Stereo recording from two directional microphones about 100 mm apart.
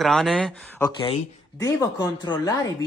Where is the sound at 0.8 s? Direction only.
50° left (ahead or behind).